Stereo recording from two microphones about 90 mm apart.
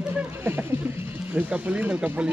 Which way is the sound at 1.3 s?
15° right (ahead or behind).